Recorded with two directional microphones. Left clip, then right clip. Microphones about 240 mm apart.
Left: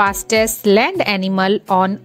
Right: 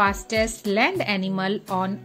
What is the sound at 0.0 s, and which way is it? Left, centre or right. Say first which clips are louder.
A woman's voice: left 7 dB; left.